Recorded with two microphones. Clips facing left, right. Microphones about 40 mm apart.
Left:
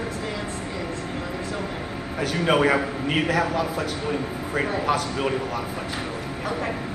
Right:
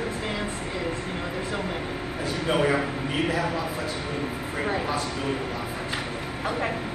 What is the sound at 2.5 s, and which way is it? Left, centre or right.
Speech, left.